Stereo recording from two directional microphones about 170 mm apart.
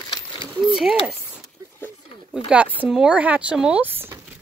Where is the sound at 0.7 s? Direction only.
5° right (ahead or behind).